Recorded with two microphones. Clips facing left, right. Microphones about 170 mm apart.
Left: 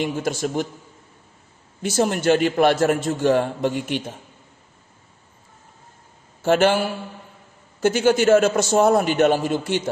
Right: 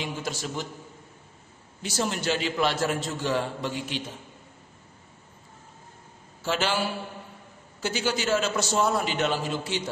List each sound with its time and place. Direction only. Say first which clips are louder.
0.0 s a man's voice: left 9 dB; 50° left (ahead or behind)
1.8 s a man's voice: left 8 dB; 50° left (ahead or behind)
6.4 s a man's voice: left 9 dB; 55° left (ahead or behind)